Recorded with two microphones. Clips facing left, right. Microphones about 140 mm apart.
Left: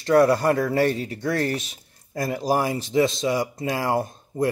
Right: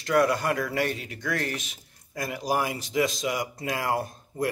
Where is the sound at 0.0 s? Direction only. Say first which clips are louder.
Left 6 dB; 30° left (ahead or behind).